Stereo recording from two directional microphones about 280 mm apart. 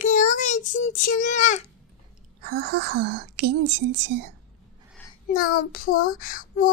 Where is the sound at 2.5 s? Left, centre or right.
Right.